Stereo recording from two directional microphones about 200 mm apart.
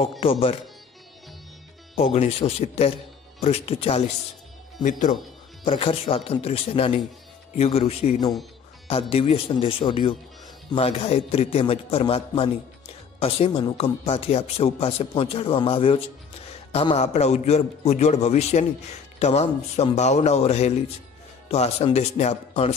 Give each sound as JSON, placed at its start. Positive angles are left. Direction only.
{"t": 0.2, "sound": "a man's voice", "side_deg": 30}
{"t": 2.0, "sound": "a man's voice", "side_deg": 30}
{"t": 4.8, "sound": "a man's voice", "side_deg": 40}
{"t": 5.7, "sound": "a man's voice", "side_deg": 30}
{"t": 13.5, "sound": "a man's voice", "side_deg": 20}